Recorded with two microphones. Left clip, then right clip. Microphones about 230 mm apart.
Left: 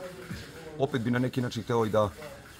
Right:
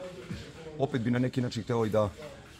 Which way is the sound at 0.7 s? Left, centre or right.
Centre.